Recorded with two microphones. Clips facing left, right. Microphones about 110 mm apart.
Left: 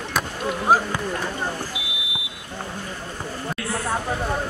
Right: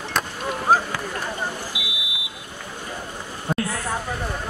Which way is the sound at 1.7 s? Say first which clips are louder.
Even; 15° right (ahead or behind).